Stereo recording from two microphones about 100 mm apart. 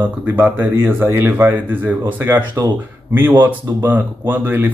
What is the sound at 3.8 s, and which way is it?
Speech, 20° right (ahead or behind).